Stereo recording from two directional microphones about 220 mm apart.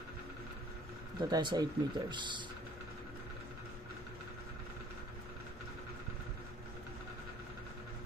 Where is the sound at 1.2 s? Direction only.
20° right (ahead or behind).